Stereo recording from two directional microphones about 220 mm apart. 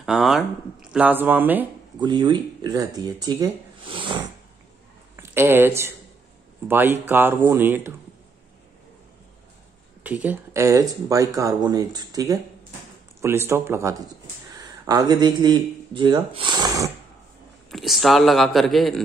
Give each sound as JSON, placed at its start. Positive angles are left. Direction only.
{"t": 0.0, "sound": "speech", "side_deg": 0}
{"t": 2.0, "sound": "speech", "side_deg": -20}
{"t": 5.1, "sound": "speech", "side_deg": -10}
{"t": 10.0, "sound": "speech", "side_deg": -5}
{"t": 17.6, "sound": "speech", "side_deg": 0}